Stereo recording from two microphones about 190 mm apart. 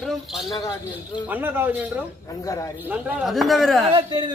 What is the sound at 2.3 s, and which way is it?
Speech, 15° left (ahead or behind).